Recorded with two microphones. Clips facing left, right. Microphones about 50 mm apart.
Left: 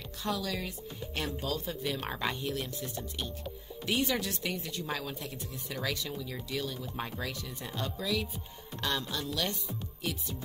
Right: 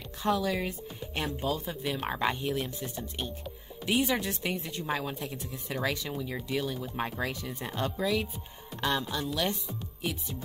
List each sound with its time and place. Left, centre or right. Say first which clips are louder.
0.2 s speech: right 6 dB; right
9.1 s speech: right 3 dB; centre